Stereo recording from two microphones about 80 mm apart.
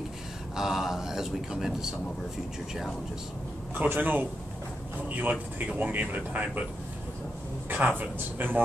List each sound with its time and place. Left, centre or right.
0.6 s a man's voice: centre
3.7 s speech: right
7.7 s speech: centre